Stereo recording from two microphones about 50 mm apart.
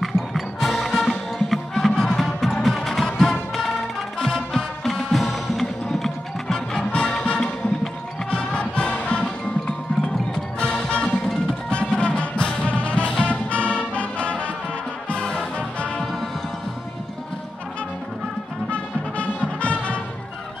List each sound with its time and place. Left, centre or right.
0.0 s music: centre
8.5 s music: centre
18.7 s music: left